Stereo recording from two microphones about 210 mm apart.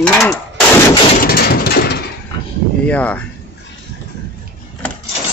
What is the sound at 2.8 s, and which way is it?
Speech, 5° left (ahead or behind).